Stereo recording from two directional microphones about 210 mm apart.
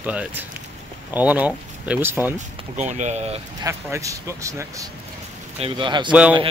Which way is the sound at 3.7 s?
15° right (ahead or behind).